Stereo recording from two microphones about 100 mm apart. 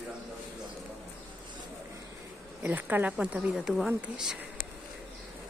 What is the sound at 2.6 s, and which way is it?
Speech, 20° right (ahead or behind).